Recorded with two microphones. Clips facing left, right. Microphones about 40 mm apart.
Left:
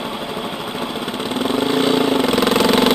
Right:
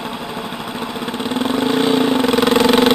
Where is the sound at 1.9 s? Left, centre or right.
Centre.